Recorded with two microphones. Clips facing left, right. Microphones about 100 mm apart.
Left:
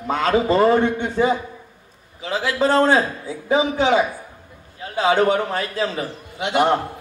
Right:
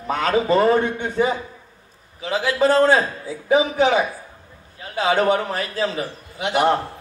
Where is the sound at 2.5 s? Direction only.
30° left (ahead or behind).